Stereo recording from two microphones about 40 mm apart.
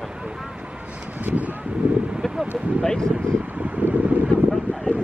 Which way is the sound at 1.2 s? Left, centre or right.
Right.